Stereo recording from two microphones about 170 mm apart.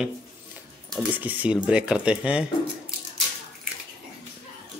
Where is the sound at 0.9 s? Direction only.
10° right (ahead or behind).